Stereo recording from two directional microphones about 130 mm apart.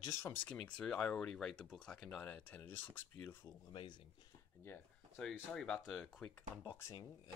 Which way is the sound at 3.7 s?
40° left (ahead or behind).